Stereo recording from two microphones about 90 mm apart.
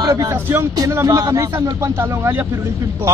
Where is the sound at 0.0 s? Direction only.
50° right (ahead or behind).